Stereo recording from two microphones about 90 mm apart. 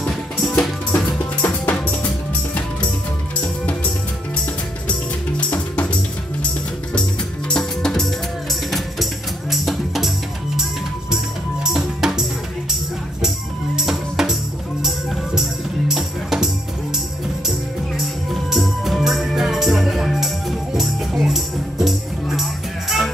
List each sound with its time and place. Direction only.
0.0 s music: 5° left (ahead or behind)
0.9 s music: 20° left (ahead or behind)
7.4 s music: 5° left (ahead or behind)
13.7 s music: 5° right (ahead or behind)
17.9 s music: centre (ahead or behind)